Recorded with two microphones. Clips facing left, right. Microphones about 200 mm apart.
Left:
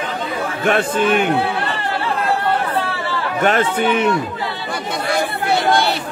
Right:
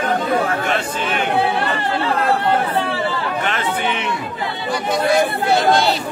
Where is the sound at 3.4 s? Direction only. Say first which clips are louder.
Left 9 dB; 45° left (ahead or behind).